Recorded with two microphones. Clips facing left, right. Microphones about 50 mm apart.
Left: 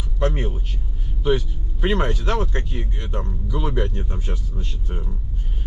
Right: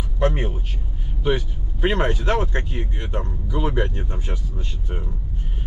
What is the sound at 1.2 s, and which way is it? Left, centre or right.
Speech, right.